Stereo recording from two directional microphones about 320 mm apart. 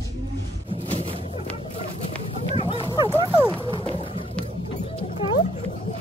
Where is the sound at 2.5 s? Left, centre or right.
Centre.